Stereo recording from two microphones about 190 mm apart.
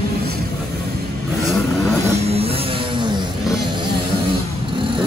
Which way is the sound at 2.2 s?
30° right (ahead or behind).